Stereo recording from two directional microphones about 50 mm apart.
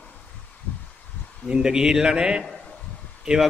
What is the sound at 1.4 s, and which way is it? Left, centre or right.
Speech, centre.